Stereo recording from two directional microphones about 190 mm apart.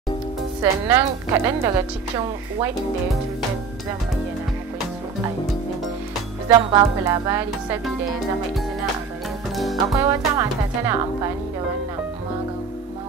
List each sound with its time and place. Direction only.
0.6 s a woman's voice: 15° right (ahead or behind)
6.5 s a woman's voice: 20° right (ahead or behind)
9.6 s music: centre (ahead or behind)
9.9 s a woman's voice: 15° right (ahead or behind)